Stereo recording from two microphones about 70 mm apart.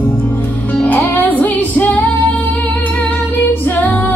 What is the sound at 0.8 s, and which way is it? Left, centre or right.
Music, left.